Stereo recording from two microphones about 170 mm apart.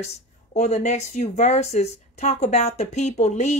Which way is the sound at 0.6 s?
40° left (ahead or behind).